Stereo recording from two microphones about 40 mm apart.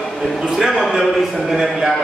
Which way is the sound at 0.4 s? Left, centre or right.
Centre.